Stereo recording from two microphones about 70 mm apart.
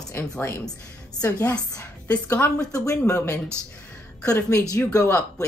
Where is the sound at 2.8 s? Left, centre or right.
Left.